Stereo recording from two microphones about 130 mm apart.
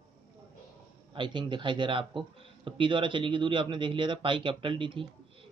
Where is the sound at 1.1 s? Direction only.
40° right (ahead or behind).